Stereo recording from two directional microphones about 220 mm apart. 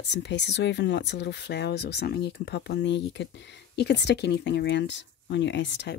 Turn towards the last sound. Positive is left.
turn(degrees=55)  # may be behind; listen again after turning